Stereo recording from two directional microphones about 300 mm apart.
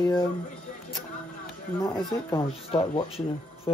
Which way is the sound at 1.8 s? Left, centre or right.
Centre.